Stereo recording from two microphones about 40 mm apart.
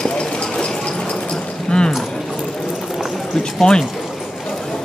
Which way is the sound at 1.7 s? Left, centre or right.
Centre.